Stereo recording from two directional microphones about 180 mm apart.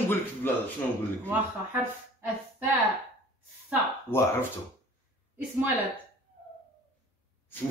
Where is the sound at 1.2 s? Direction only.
15° right (ahead or behind).